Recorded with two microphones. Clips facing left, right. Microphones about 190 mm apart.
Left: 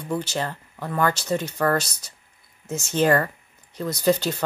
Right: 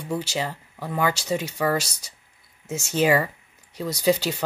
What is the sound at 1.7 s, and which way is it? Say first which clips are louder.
Speech: left 1 dB; 55° left (ahead or behind).